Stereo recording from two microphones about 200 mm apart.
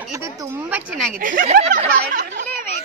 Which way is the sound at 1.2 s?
45° right (ahead or behind).